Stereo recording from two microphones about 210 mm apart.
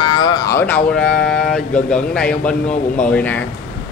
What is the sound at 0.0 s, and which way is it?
Speech, 20° left (ahead or behind).